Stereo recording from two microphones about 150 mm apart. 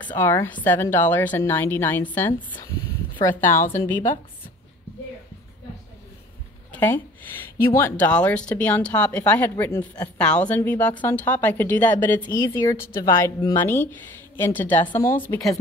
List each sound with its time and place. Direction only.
0.0 s a woman's voice: 15° left (ahead or behind)
6.7 s a woman's voice: 15° left (ahead or behind)
12.7 s a woman's voice: 80° left
13.0 s a woman's voice: 20° left (ahead or behind)